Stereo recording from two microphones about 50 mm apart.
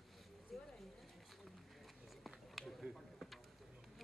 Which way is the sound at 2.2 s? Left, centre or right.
Centre.